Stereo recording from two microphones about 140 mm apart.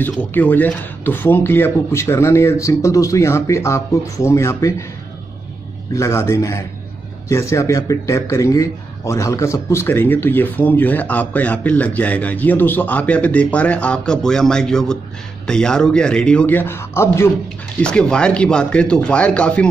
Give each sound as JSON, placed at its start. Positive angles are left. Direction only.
{"t": 0.0, "sound": "speech", "side_deg": 15}
{"t": 5.9, "sound": "speech", "side_deg": 20}
{"t": 17.7, "sound": "speech", "side_deg": 5}